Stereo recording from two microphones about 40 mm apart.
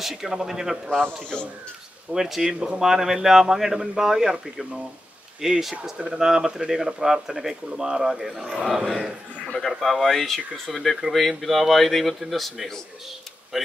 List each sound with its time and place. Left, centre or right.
0.0 s speech: centre
0.9 s a man's voice: left
2.1 s speech: centre
9.5 s speech: centre